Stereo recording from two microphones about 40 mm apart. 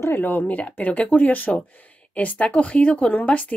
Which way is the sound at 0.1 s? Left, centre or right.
Left.